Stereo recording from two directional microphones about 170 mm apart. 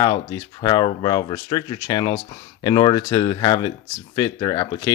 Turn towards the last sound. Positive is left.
turn(degrees=25)  # may be behind; listen again after turning